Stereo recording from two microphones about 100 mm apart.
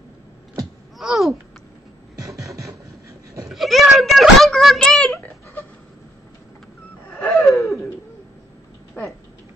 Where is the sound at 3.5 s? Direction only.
Centre (ahead or behind).